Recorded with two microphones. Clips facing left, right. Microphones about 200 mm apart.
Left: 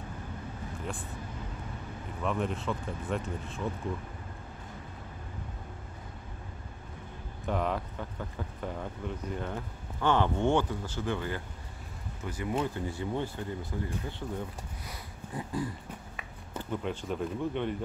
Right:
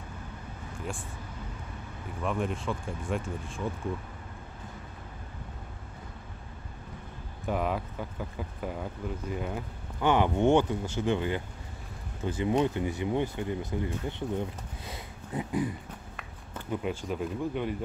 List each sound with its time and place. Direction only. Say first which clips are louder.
2.2 s speech: right 1 dB; centre (ahead or behind)
7.4 s speech: right 1 dB; 5° right (ahead or behind)
14.9 s dog: right 7 dB; 20° right (ahead or behind)
16.7 s speech: right 2 dB; 5° right (ahead or behind)